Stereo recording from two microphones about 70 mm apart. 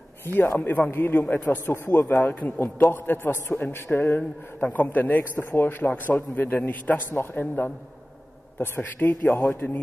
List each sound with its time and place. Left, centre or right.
0.2 s a man's voice: left